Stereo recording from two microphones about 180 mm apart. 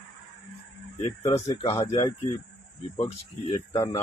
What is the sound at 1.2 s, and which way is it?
Speech, 40° left (ahead or behind).